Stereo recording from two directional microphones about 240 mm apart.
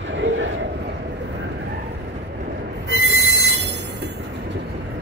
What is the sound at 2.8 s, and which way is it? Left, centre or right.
Train wheels squealing, right.